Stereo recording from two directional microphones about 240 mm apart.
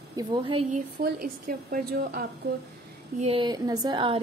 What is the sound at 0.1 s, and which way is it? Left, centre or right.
A woman's voice, centre.